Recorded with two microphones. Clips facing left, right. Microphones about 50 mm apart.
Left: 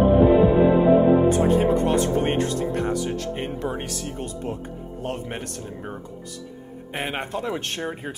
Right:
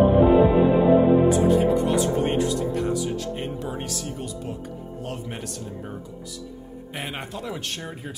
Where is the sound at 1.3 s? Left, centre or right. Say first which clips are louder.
Even; left.